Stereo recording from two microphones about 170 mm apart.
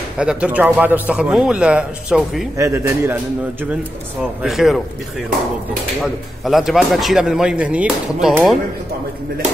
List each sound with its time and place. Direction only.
0.2 s a man's voice: 5° right (ahead or behind)
2.5 s a man's voice: 15° right (ahead or behind)
4.4 s speech: centre (ahead or behind)
6.4 s speech: centre (ahead or behind)